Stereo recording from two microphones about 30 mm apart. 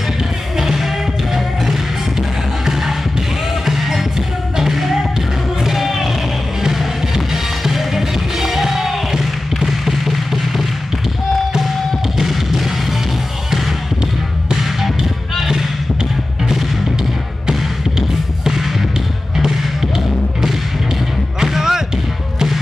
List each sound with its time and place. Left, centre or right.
0.6 s music: centre
12.2 s music: centre
15.3 s music: centre
17.5 s music: centre
21.4 s music: centre